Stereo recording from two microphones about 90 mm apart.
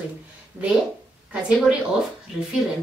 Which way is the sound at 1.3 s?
10° right (ahead or behind).